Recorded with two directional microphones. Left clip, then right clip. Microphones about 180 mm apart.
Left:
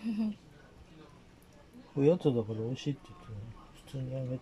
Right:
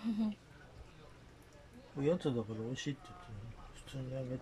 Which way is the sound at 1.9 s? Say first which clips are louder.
Left 7 dB; 15° left (ahead or behind).